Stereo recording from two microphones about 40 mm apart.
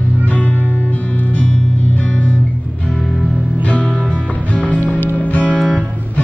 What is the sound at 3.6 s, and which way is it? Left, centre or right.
Music, left.